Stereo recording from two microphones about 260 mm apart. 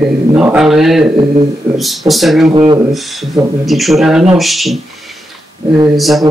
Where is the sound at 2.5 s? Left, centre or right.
Centre.